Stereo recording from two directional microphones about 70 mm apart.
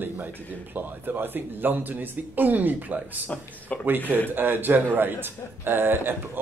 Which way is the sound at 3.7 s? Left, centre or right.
Centre.